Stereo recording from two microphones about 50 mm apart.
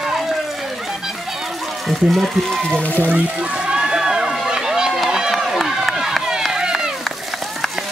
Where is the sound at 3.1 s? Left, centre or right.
Right.